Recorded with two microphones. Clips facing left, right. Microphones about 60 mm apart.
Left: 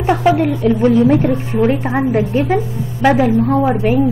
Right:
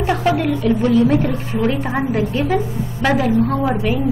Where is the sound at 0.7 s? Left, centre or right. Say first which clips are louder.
Left 3 dB; left.